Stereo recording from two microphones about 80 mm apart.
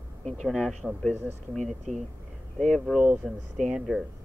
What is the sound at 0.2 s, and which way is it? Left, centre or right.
Speech, centre.